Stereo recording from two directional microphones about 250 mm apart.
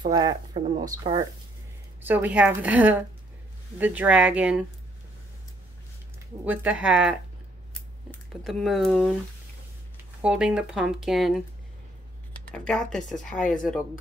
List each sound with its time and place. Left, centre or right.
0.0 s speech: centre
2.0 s speech: centre
6.4 s speech: centre
10.2 s speech: centre
12.4 s speech: centre